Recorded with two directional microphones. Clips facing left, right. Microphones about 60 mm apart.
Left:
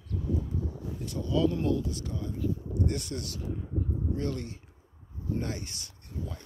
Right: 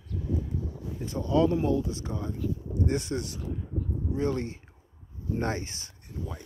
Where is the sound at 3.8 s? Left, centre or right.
Centre.